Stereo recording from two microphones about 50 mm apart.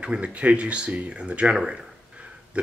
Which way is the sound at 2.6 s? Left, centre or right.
Right.